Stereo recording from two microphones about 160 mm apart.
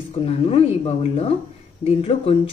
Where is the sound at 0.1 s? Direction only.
40° left (ahead or behind).